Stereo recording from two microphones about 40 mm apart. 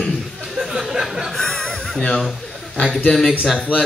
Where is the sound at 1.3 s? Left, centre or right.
Centre.